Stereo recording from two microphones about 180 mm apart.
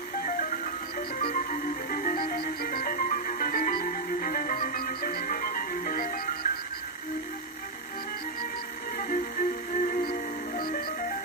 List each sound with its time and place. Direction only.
0.2 s music: 45° left (ahead or behind)
8.9 s music: 50° left (ahead or behind)